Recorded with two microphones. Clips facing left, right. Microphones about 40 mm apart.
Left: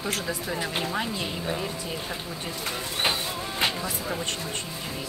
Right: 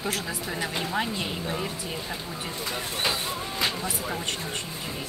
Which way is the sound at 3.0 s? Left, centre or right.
Left.